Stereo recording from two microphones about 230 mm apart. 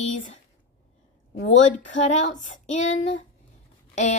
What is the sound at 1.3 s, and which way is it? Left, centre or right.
Speech, left.